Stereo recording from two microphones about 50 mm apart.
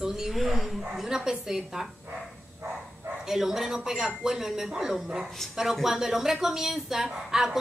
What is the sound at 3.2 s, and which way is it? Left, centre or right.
A woman's voice, centre.